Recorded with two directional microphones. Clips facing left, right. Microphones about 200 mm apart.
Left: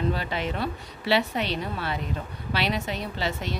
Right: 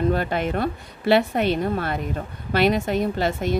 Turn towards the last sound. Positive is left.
turn(degrees=-50)  # may be behind; listen again after turning